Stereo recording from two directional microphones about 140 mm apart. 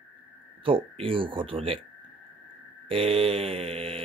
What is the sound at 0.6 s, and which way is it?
Speech, 40° right (ahead or behind).